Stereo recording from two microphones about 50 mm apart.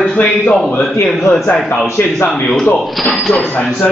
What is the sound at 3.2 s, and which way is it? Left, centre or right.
Speech, centre.